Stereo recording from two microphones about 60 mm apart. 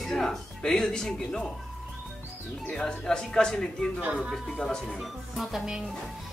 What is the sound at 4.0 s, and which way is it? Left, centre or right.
Speech, right.